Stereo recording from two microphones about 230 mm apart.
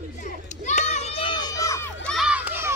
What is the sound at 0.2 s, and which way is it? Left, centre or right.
Children playing, left.